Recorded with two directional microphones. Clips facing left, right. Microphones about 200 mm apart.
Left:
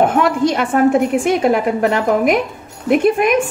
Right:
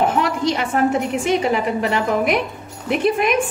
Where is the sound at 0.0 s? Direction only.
50° left (ahead or behind).